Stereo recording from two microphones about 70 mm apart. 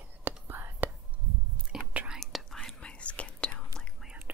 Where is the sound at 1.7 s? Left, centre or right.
Centre.